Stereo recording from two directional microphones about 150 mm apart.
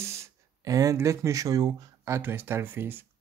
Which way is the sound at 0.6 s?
20° right (ahead or behind).